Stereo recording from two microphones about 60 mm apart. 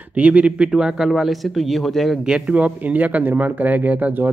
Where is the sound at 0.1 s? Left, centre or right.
Right; by 2.1 s centre.